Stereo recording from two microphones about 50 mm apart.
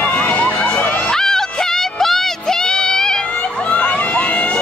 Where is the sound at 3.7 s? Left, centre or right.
Left.